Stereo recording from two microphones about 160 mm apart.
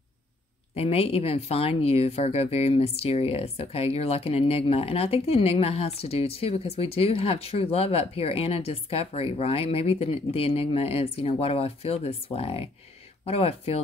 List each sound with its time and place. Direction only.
0.7 s speech: 40° left (ahead or behind)